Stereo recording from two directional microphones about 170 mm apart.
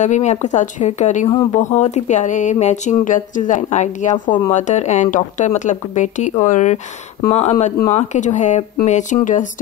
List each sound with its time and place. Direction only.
0.0 s speech: 45° left (ahead or behind)